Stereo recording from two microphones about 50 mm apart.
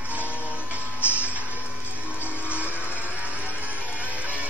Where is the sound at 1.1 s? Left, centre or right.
Right.